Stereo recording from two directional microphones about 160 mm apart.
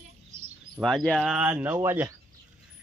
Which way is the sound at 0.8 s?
Centre (ahead or behind).